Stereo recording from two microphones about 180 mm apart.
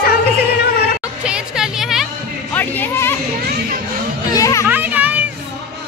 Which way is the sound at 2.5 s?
10° left (ahead or behind).